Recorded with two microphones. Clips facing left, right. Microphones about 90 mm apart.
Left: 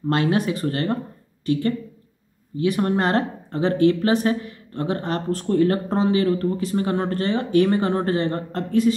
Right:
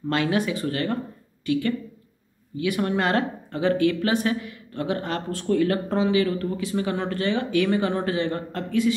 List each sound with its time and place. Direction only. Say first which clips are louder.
0.1 s speech: left 3 dB; 40° left (ahead or behind)